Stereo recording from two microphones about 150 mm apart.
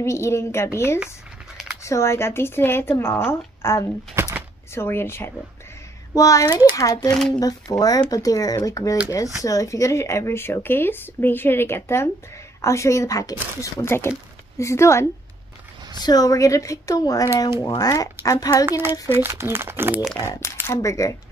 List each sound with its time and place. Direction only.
0.0 s speech: 20° left (ahead or behind)
4.2 s a sound: 15° right (ahead or behind)
4.7 s speech: 15° left (ahead or behind)
7.1 s speech: 5° left (ahead or behind)
7.3 s speech: 25° left (ahead or behind)
18.7 s speech: 15° right (ahead or behind)
20.2 s speech: 15° left (ahead or behind)